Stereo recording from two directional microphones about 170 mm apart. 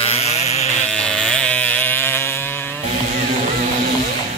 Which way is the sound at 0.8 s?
5° left (ahead or behind).